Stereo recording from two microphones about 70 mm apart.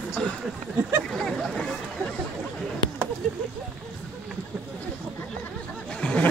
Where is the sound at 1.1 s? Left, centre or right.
Centre.